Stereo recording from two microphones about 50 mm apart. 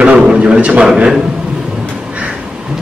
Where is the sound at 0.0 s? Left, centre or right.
Right.